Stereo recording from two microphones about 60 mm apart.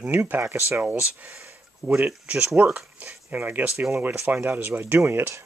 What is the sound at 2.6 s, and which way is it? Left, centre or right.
Speech, right.